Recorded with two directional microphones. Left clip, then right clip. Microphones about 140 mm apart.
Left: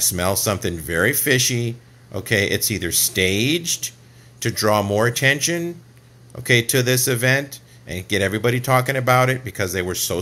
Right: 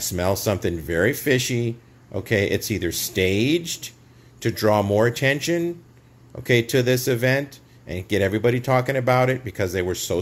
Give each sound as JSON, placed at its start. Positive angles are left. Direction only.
{"t": 0.0, "sound": "speech", "side_deg": -15}